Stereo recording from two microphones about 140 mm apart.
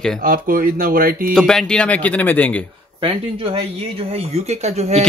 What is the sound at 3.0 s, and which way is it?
Speech, 40° right (ahead or behind).